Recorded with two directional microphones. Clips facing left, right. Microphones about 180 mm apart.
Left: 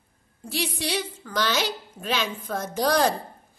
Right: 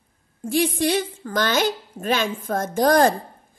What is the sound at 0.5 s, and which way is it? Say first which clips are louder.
Speech: right 8 dB; 50° right (ahead or behind).